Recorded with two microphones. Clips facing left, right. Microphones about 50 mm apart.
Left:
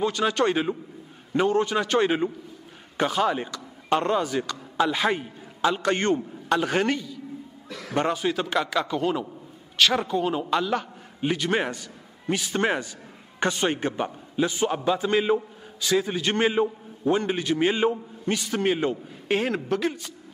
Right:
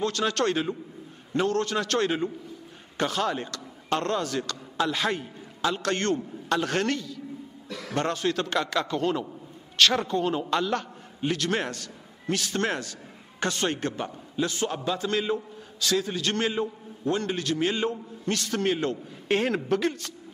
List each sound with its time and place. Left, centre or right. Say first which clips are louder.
0.0 s a man's voice: left 3 dB; centre
19.2 s a woman's voice: even; centre